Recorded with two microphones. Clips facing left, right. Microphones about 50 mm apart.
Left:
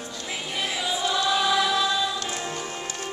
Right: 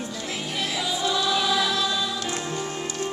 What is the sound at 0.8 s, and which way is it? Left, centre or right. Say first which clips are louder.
Choir: left 1 dB; centre.